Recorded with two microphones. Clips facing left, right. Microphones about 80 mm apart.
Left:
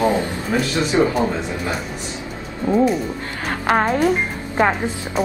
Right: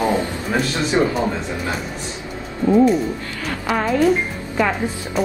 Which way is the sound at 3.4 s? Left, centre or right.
Left.